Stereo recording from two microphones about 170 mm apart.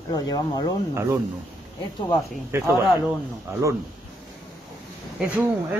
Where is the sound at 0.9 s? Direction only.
15° right (ahead or behind).